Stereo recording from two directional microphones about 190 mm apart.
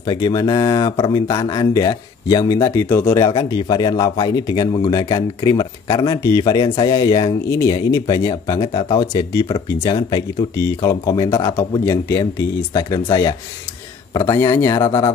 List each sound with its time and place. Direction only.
0.0 s speech: 25° left (ahead or behind)